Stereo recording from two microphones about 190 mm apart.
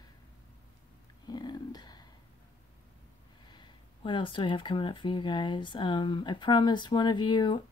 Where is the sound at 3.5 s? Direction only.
25° left (ahead or behind).